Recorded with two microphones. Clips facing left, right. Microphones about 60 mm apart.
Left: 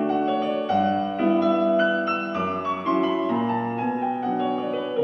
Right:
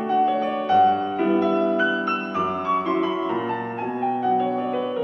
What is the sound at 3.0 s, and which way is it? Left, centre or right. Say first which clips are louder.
Music: left 1 dB; right.